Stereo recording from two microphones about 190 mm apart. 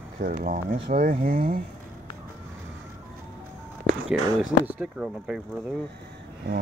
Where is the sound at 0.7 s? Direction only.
35° right (ahead or behind).